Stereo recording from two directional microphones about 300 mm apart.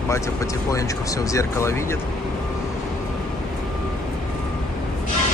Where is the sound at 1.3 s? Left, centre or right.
Centre.